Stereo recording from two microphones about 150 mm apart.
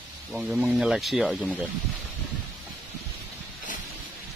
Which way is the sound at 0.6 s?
5° right (ahead or behind).